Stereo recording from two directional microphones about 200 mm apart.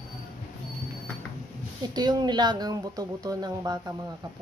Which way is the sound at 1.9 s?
20° right (ahead or behind).